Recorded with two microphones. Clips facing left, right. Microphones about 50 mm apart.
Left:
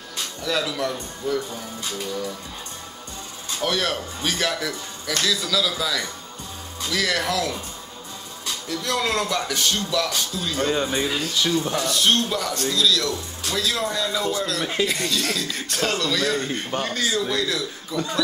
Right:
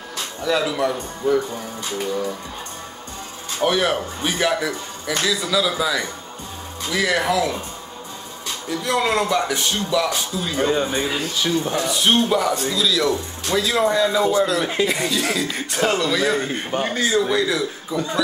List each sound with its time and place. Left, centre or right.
0.4 s speech: centre
3.6 s speech: centre
8.6 s speech: right